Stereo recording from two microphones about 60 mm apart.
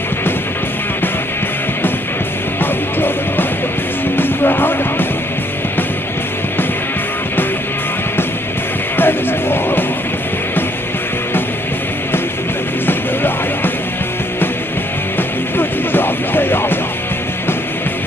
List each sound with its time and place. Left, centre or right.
2.6 s music: left
8.9 s music: left
12.8 s music: left
15.5 s music: left